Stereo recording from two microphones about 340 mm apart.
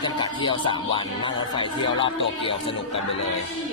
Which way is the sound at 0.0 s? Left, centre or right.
Centre.